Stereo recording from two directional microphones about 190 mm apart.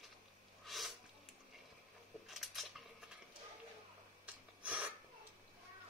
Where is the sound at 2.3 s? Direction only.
Centre (ahead or behind).